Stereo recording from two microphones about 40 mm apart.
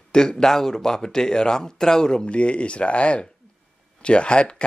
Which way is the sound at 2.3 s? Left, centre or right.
Left.